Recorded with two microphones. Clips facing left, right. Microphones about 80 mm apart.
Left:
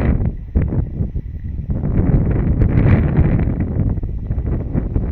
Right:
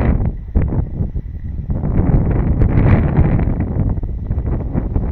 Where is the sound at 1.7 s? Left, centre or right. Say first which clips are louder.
Right 1 dB; right.